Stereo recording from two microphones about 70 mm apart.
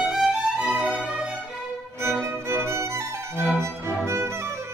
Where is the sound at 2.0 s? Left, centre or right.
Right.